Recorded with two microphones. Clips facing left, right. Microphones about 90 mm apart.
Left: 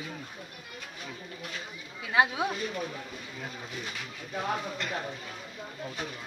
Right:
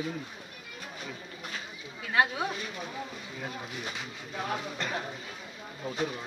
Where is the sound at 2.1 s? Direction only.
10° left (ahead or behind).